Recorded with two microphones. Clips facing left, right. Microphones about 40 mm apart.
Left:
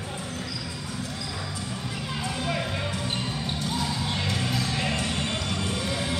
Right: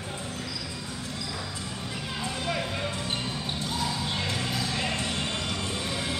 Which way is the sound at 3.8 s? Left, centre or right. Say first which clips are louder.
Left 1 dB; centre.